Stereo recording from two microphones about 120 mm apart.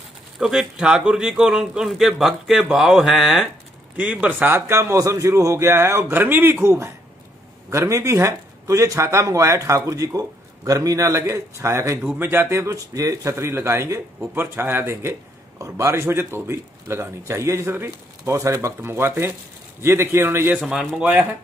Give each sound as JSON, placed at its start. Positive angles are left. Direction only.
{"t": 0.4, "sound": "a man's voice", "side_deg": -5}